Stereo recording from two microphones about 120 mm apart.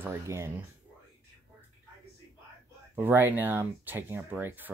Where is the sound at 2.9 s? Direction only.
20° right (ahead or behind).